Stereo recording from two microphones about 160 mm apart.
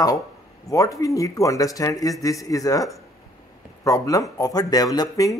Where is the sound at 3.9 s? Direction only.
20° left (ahead or behind).